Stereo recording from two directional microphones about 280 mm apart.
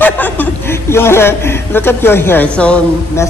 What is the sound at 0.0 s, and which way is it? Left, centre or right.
Speech, centre.